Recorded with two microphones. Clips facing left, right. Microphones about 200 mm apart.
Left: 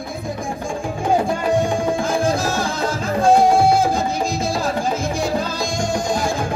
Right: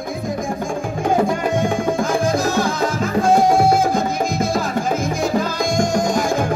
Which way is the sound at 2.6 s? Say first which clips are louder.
Right 2 dB; 30° left (ahead or behind).